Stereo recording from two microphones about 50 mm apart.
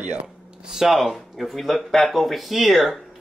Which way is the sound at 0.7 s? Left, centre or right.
Centre.